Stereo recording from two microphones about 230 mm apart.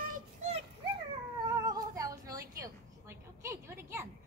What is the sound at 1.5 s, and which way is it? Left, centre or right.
Female singing, centre.